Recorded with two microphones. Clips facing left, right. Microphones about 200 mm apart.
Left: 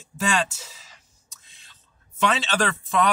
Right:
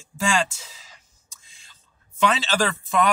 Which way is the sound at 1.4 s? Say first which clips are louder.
Right 1 dB; centre (ahead or behind).